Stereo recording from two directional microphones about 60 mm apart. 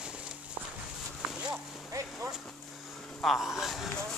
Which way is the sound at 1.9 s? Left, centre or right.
Right.